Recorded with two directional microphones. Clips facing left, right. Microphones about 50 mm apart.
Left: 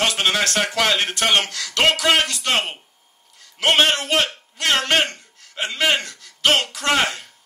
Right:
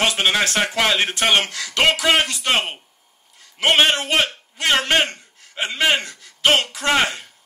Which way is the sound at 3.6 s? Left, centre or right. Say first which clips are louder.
Right 1 dB; centre.